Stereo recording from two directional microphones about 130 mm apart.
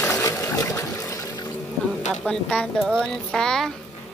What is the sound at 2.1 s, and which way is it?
Speech, 10° left (ahead or behind).